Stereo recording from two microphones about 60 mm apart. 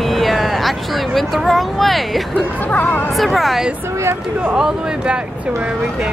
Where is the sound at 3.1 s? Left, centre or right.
Centre.